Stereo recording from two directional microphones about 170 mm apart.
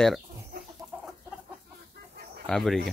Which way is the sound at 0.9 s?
10° right (ahead or behind).